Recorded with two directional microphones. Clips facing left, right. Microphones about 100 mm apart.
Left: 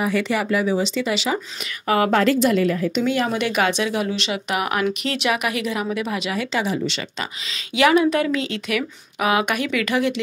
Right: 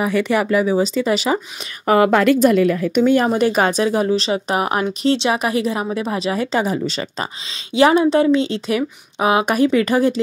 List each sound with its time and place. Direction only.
0.0 s speech: 50° right (ahead or behind)
3.3 s a woman's voice: 35° right (ahead or behind)